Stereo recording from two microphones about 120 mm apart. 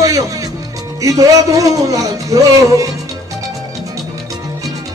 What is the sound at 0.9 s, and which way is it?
Speech, 30° right (ahead or behind).